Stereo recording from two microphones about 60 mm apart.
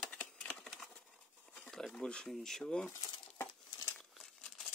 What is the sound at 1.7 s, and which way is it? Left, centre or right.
Speech, centre.